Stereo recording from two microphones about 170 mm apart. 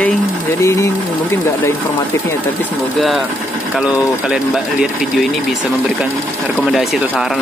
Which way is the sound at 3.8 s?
5° right (ahead or behind).